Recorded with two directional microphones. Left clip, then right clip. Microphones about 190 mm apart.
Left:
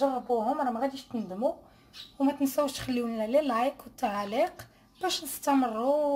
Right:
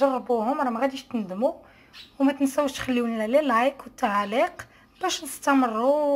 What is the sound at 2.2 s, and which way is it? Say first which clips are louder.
A woman's voice: right 4 dB; centre (ahead or behind).